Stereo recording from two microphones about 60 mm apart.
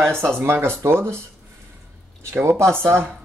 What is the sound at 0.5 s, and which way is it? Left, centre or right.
Speech, right.